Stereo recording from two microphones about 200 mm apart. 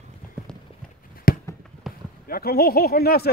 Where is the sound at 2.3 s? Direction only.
50° left (ahead or behind).